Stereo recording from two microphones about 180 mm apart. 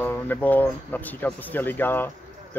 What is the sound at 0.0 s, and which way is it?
Speech, 10° left (ahead or behind).